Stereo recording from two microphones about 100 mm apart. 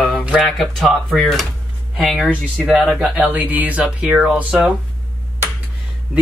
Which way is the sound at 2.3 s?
15° right (ahead or behind).